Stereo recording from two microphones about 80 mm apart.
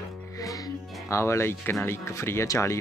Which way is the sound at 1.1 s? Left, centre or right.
Left.